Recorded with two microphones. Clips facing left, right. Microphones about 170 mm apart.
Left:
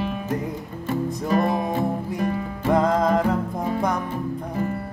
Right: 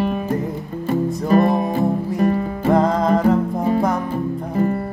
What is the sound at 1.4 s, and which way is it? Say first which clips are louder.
Music: right 5 dB; 25° right (ahead or behind).